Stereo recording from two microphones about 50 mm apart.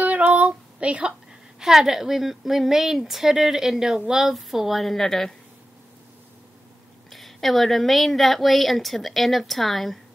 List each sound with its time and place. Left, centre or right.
0.0 s female singing: right
1.6 s a woman's voice: centre
7.1 s a woman's voice: centre